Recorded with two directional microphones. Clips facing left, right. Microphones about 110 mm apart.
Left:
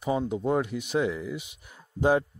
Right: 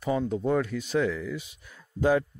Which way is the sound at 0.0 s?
20° left (ahead or behind).